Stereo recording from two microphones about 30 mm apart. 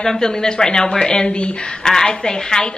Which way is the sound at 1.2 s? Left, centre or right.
Left.